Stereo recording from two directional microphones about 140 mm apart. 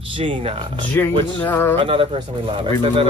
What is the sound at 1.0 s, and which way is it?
Speech, 15° left (ahead or behind).